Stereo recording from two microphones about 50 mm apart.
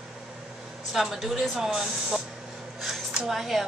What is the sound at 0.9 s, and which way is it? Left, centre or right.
Speech, centre.